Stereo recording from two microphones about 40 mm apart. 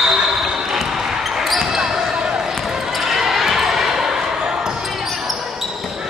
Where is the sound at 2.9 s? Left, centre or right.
Centre.